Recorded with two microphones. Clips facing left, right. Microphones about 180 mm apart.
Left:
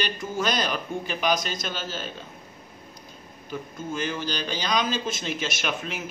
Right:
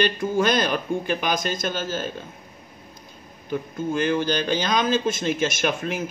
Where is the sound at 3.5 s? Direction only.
55° right (ahead or behind).